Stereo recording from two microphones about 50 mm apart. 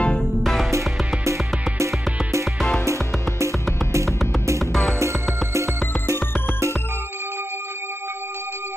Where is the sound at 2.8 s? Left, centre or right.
Right.